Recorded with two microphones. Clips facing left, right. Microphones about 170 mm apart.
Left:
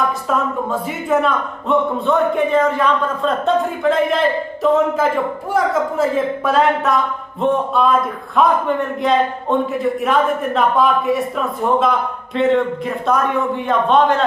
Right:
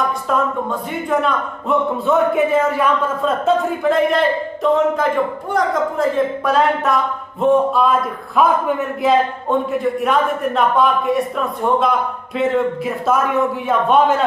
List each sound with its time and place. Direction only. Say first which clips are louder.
0.3 s a man's voice: right 2 dB; 5° left (ahead or behind)